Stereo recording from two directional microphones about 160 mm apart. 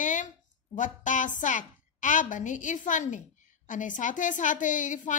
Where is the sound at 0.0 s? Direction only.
50° left (ahead or behind).